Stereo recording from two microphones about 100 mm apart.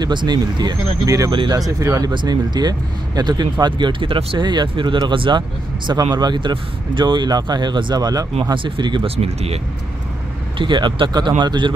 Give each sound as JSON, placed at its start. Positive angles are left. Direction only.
{"t": 0.0, "sound": "speech", "side_deg": -50}
{"t": 1.3, "sound": "speech", "side_deg": -55}
{"t": 1.6, "sound": "speech", "side_deg": -35}
{"t": 8.6, "sound": "speech", "side_deg": -50}
{"t": 9.0, "sound": "speech", "side_deg": -80}
{"t": 10.6, "sound": "speech", "side_deg": -55}